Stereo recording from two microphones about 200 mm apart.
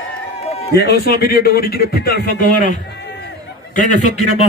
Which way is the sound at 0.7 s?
55° left (ahead or behind).